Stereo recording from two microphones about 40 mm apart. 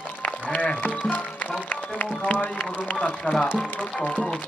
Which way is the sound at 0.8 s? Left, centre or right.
Left.